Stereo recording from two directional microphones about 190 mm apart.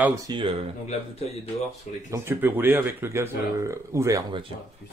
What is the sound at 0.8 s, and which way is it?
Speech, 35° left (ahead or behind).